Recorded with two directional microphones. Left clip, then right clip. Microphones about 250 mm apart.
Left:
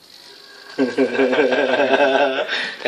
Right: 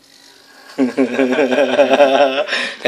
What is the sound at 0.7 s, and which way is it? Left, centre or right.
Speech, right.